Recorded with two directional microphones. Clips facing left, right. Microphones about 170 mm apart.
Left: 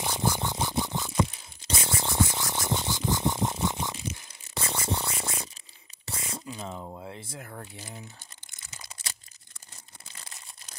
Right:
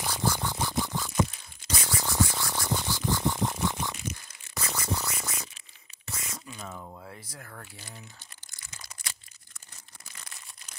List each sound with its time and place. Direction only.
0.0 s scratch: 20° left (ahead or behind)
1.7 s music: 25° left (ahead or behind)
3.9 s a sound: 30° left (ahead or behind)
6.0 s speech: 30° left (ahead or behind)
8.5 s a sound: 20° left (ahead or behind)
10.0 s crumpling: 25° left (ahead or behind)